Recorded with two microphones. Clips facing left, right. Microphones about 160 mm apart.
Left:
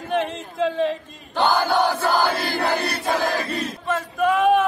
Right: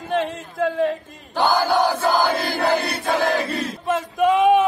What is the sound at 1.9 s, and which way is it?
Crowd, 15° right (ahead or behind).